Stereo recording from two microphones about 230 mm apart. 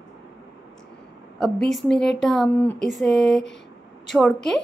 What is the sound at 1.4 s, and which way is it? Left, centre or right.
Speech, centre.